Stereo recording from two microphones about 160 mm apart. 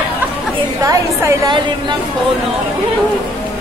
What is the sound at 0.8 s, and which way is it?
A woman's voice, 20° right (ahead or behind).